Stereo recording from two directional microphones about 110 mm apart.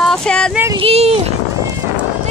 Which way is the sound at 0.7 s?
65° right (ahead or behind).